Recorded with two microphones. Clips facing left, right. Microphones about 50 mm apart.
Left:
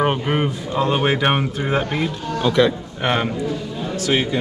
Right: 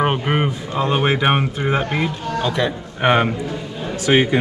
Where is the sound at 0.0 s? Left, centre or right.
Centre.